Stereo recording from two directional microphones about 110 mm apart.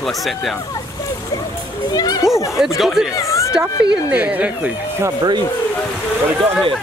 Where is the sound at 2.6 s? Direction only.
Centre (ahead or behind).